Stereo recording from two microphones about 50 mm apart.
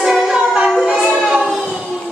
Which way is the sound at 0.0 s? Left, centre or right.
Centre.